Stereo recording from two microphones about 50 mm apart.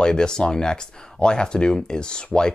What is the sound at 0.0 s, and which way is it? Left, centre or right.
Speech, centre.